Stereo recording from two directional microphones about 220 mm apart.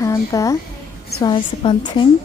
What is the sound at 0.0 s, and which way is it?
A woman's voice, 15° left (ahead or behind).